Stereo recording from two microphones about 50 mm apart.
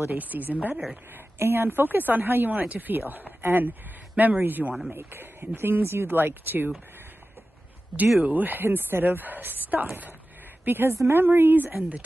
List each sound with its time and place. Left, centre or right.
0.1 s speech: right
8.2 s speech: right